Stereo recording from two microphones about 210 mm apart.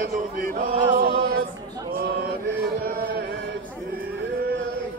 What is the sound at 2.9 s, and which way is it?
Music, 45° right (ahead or behind).